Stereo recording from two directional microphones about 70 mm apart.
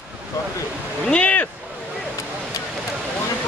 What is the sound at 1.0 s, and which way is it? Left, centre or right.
Speech, centre.